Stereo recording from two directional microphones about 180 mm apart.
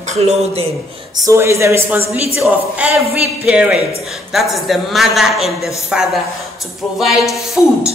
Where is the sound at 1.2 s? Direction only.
15° right (ahead or behind).